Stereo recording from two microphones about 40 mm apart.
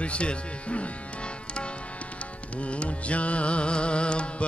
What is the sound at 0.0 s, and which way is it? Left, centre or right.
Music, left.